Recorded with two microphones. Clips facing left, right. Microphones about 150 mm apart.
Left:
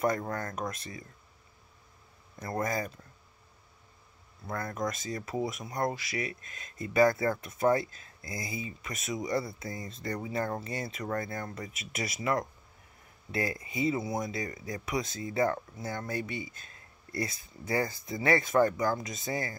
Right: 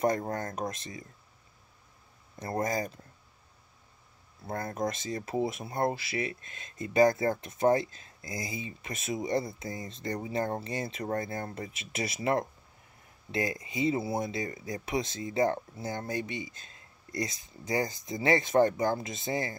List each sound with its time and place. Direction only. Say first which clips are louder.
0.3 s speech: right 1 dB; 25° right (ahead or behind)
2.3 s speech: right 1 dB; 25° right (ahead or behind)
4.5 s speech: right 1 dB; 25° right (ahead or behind)